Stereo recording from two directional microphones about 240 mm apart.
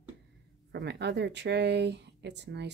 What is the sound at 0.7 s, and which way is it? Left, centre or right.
Speech, right.